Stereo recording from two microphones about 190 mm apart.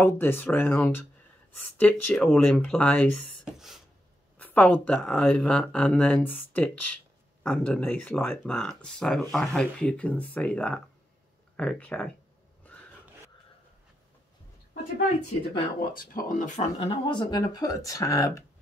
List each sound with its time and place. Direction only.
0.0 s speech: 10° left (ahead or behind)
3.4 s a sound: centre (ahead or behind)
4.4 s speech: 10° left (ahead or behind)
15.8 s speech: 50° left (ahead or behind)
16.7 s speech: 25° left (ahead or behind)